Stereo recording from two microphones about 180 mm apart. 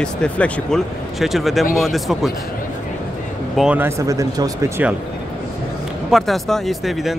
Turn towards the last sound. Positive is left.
turn(degrees=0)  # may be behind; listen again after turning